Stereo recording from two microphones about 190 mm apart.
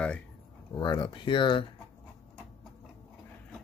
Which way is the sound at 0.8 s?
25° left (ahead or behind).